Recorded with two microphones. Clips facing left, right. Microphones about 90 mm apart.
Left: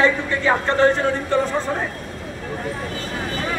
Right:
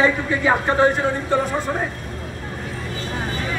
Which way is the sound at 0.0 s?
10° right (ahead or behind).